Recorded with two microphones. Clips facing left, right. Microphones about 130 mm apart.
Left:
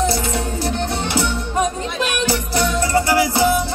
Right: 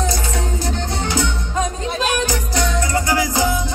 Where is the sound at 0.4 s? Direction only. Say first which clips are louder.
Left 2 dB; 15° right (ahead or behind).